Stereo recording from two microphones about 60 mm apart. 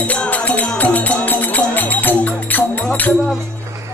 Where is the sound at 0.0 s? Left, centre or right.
Left.